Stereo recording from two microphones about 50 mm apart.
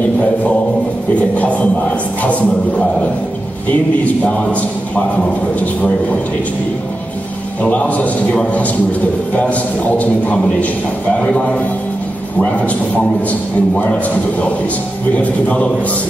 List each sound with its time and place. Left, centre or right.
1.3 s a man's voice: left
4.0 s a man's voice: left
7.8 s a man's voice: left
13.3 s a man's voice: left